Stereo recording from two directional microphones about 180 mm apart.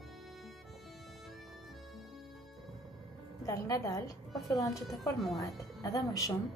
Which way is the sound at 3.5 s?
20° left (ahead or behind).